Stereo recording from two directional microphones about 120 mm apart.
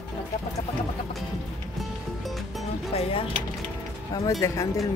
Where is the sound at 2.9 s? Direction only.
55° left (ahead or behind).